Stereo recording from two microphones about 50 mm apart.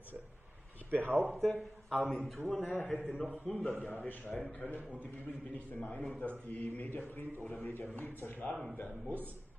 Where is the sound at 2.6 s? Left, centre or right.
Left.